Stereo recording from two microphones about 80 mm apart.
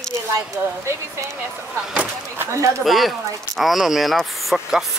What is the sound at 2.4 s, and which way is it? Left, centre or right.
Speech, right.